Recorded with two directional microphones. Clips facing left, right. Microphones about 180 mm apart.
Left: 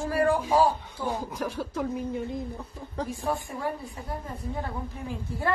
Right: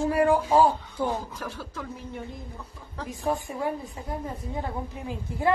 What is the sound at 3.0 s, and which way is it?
A woman's voice, 20° right (ahead or behind).